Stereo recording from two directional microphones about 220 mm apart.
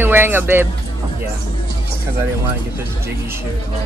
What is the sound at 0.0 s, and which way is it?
Speech, 10° right (ahead or behind).